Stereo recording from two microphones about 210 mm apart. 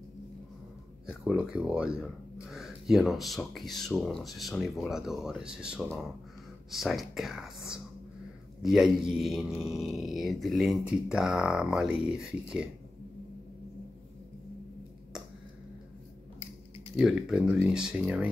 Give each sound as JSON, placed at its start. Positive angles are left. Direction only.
{"t": 1.0, "sound": "speech", "side_deg": -5}
{"t": 16.3, "sound": "a sound", "side_deg": 30}
{"t": 17.0, "sound": "speech", "side_deg": -5}